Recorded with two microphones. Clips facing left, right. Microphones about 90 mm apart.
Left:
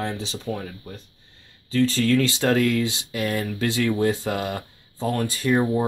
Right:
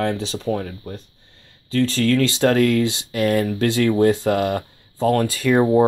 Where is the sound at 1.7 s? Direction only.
60° right (ahead or behind).